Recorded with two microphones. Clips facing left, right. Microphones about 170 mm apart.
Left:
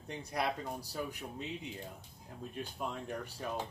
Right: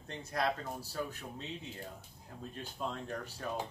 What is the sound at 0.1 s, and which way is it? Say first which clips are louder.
Speech: right 1 dB; 15° left (ahead or behind).